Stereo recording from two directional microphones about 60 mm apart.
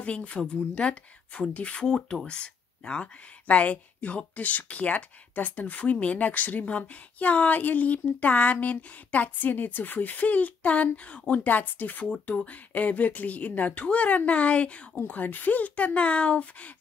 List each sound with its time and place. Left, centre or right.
0.0 s speech: left
2.0 s speech: centre
2.2 s speech: centre